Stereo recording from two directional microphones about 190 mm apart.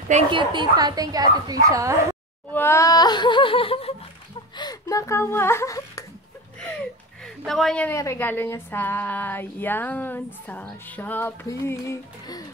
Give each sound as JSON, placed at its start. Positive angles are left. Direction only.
{"t": 0.1, "sound": "speech", "side_deg": -25}
{"t": 2.5, "sound": "a woman's voice", "side_deg": 10}
{"t": 7.4, "sound": "a woman's voice", "side_deg": 0}